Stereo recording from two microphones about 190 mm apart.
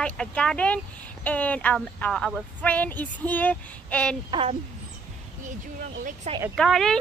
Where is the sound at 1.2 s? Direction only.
5° left (ahead or behind).